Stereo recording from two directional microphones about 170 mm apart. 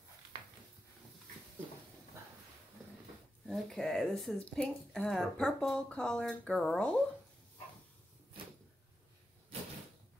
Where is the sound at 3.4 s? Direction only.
Centre (ahead or behind).